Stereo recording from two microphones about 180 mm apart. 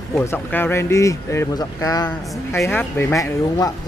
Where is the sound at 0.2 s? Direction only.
10° left (ahead or behind).